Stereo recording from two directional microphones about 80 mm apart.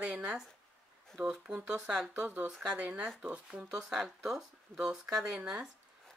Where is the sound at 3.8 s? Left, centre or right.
Centre.